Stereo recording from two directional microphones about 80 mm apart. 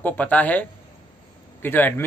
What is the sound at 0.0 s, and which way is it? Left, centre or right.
A man's voice, centre.